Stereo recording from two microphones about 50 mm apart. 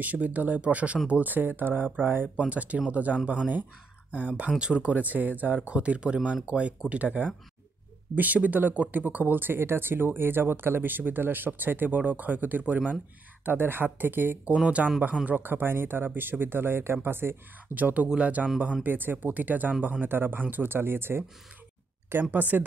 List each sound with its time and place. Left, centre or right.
0.0 s speech: right
2.3 s speech: right
14.4 s speech: right
15.2 s speech: right
17.7 s speech: right
18.0 s speech: centre
18.6 s speech: right
22.2 s speech: right